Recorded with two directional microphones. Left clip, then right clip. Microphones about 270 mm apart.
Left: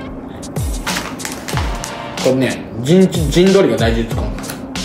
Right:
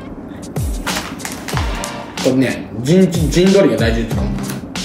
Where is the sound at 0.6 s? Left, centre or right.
Centre.